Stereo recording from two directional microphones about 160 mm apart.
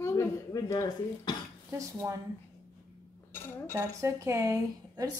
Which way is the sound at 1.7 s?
20° right (ahead or behind).